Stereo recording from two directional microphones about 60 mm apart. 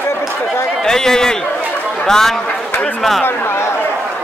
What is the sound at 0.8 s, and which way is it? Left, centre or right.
A man's voice, centre.